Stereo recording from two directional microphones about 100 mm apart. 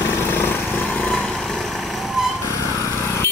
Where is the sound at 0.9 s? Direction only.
10° left (ahead or behind).